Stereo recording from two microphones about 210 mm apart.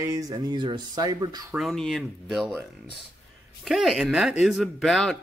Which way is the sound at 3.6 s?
Centre (ahead or behind).